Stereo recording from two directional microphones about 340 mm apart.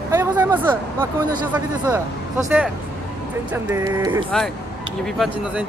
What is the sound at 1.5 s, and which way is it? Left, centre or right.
Speech, centre.